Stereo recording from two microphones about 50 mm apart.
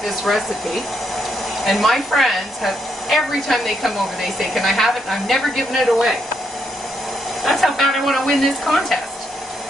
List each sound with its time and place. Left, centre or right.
0.0 s a sound: centre
1.6 s a woman's voice: centre
7.4 s a woman's voice: centre